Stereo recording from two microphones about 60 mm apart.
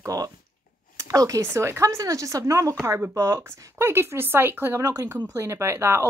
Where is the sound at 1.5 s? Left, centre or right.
Right.